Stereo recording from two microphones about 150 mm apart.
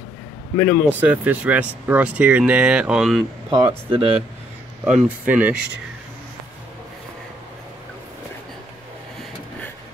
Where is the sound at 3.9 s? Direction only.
40° right (ahead or behind).